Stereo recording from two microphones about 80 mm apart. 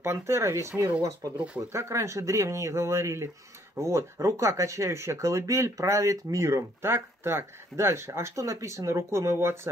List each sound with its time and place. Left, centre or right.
0.0 s speech: right
1.3 s speech: centre
1.7 s speech: right